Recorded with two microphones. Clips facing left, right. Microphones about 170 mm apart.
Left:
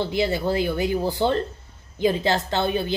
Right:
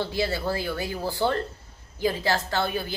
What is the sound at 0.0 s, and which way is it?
Speech, 15° left (ahead or behind).